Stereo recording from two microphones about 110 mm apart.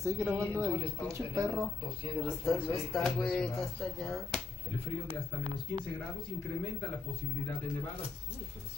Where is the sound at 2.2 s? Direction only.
5° left (ahead or behind).